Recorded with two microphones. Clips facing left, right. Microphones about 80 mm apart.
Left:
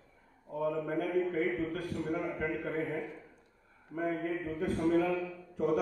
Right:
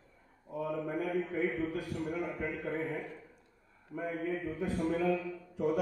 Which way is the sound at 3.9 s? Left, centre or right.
Left.